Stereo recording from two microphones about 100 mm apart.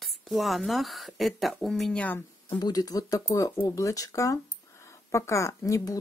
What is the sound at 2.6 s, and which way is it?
Speech, 45° left (ahead or behind).